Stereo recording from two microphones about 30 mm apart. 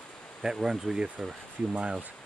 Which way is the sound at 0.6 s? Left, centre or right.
Centre.